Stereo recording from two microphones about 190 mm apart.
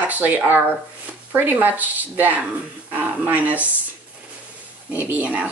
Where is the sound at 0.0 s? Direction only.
10° right (ahead or behind).